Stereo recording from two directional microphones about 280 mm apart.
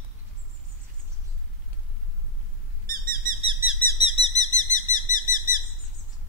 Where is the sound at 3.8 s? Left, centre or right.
Centre.